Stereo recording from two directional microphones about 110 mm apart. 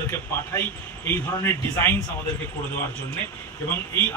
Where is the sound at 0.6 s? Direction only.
20° left (ahead or behind).